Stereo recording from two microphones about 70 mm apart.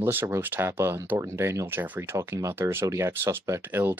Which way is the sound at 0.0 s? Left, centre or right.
Right.